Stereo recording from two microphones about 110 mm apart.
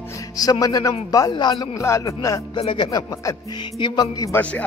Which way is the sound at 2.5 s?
50° left (ahead or behind).